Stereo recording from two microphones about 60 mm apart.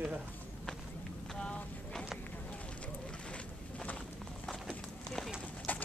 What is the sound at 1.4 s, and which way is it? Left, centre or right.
Vehicle, centre.